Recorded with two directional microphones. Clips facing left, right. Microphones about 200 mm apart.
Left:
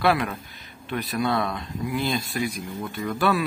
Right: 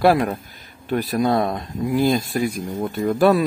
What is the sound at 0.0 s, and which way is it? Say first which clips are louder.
Speech: right 6 dB; 40° right (ahead or behind).